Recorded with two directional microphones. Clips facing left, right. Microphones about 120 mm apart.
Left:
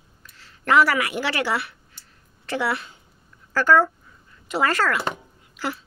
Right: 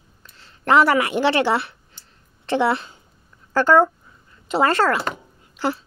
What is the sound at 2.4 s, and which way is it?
A woman's voice, 25° right (ahead or behind).